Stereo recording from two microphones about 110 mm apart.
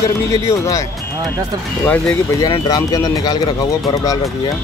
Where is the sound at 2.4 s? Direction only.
35° left (ahead or behind).